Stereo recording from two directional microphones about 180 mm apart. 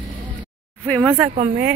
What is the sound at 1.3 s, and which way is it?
Speech, 45° right (ahead or behind).